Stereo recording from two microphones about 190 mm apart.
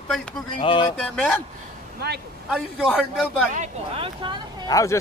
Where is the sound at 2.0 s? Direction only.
60° right (ahead or behind).